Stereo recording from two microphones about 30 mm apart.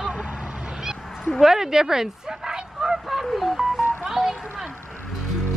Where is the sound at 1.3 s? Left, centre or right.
Centre.